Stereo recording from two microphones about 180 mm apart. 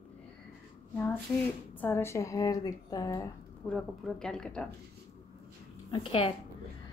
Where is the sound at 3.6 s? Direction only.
5° left (ahead or behind).